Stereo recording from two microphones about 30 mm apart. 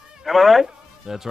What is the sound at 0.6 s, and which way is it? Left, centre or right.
Music, centre.